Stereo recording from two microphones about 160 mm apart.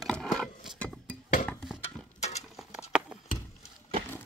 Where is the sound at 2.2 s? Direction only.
45° left (ahead or behind).